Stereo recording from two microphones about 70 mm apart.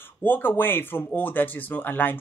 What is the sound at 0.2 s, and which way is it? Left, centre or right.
Speech, left.